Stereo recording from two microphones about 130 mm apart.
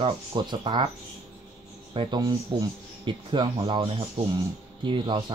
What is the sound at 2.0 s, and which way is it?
Speech, 35° right (ahead or behind).